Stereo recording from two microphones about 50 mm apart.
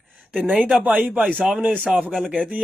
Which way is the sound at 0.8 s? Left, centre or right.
Right.